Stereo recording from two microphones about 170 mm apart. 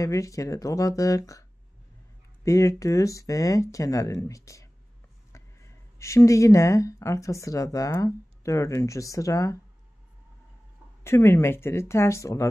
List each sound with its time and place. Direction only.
0.0 s speech: 20° left (ahead or behind)
2.4 s speech: 20° left (ahead or behind)
11.1 s speech: 15° left (ahead or behind)